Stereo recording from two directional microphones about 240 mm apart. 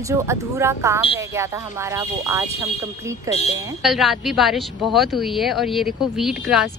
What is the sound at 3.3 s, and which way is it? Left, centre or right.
Speech, left.